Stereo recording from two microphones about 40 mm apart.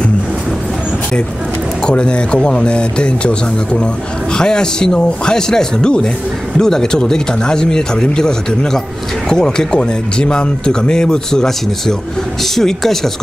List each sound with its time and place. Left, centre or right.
1.9 s speech: left
12.5 s speech: centre